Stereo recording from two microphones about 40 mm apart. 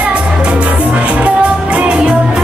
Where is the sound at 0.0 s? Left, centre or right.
Right.